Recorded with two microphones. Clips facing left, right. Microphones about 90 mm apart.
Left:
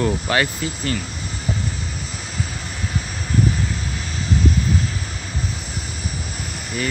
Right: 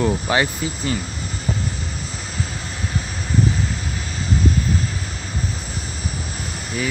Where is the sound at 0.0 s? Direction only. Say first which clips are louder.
Right 1 dB; 15° right (ahead or behind).